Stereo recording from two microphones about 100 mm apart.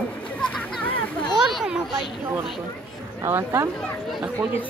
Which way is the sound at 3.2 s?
25° right (ahead or behind).